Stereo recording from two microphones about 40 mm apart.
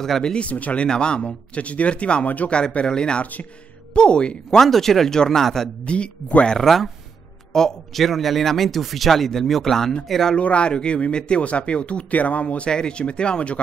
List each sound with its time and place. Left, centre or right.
0.2 s speech: left
0.5 s speech: left
0.8 s speech: left
2.2 s speech: left
2.9 s speech: left
4.6 s speech: centre
5.9 s speech: left
6.6 s speech: centre
7.5 s speech: centre
8.0 s speech: centre
10.3 s speech: left